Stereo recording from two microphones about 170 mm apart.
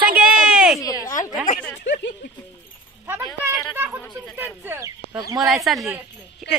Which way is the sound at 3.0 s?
10° right (ahead or behind).